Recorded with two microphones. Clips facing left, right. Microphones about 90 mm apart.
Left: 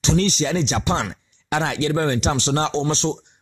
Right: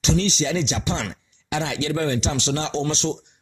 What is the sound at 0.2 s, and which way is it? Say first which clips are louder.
Speech: left 2 dB; 45° left (ahead or behind).